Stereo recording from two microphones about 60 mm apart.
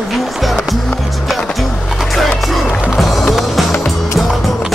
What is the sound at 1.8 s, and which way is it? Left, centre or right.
Music, centre.